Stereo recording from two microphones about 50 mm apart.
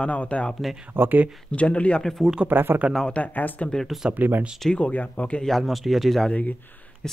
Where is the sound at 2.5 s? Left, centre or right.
Right.